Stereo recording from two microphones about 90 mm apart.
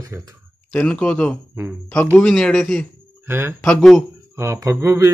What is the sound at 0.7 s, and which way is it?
A man's voice, 10° left (ahead or behind).